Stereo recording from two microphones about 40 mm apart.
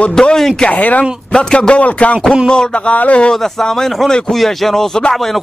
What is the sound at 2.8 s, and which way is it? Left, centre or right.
Speech, left.